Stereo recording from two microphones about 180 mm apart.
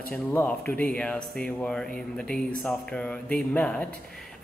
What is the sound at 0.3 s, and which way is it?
A woman's voice, 10° left (ahead or behind).